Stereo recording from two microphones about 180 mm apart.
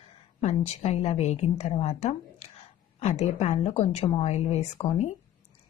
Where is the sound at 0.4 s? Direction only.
35° left (ahead or behind).